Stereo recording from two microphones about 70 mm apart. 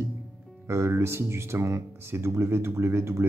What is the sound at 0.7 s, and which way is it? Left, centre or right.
Speech, right.